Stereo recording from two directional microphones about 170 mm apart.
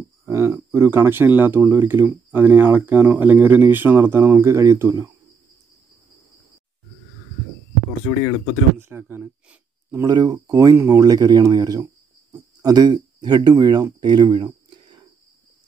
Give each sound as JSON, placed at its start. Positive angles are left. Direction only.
{"t": 0.2, "sound": "speech", "side_deg": -15}
{"t": 8.7, "sound": "speech", "side_deg": -15}